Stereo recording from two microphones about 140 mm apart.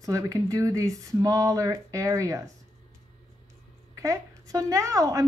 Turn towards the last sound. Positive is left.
turn(degrees=-25)  # may be behind; listen again after turning